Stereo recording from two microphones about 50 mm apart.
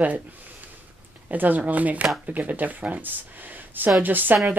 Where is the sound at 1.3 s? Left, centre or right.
Right.